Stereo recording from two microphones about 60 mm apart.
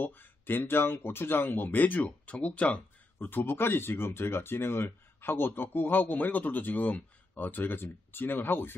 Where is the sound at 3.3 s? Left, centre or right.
Left.